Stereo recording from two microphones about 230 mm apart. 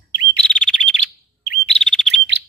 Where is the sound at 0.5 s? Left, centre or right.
Centre.